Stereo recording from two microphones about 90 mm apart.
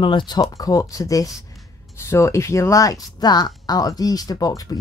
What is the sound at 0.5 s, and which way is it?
Speech, 40° left (ahead or behind).